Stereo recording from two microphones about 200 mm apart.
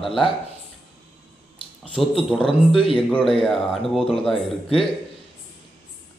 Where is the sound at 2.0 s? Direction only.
5° left (ahead or behind).